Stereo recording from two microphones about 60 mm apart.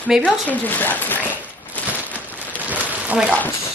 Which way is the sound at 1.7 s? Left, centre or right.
Left.